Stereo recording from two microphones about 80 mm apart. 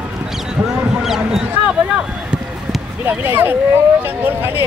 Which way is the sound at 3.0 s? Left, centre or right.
Right.